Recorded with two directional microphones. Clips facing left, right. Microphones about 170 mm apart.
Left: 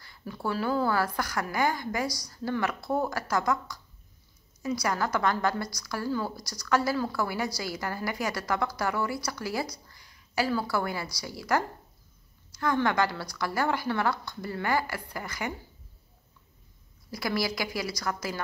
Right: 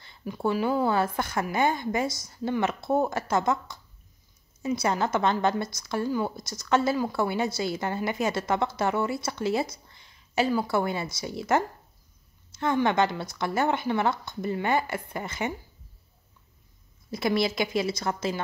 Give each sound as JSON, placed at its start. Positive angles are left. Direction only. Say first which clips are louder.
{"t": 0.0, "sound": "a woman's voice", "louder": "right 5 dB", "side_deg": -20}
{"t": 17.1, "sound": "a woman's voice", "louder": "right 4 dB", "side_deg": -25}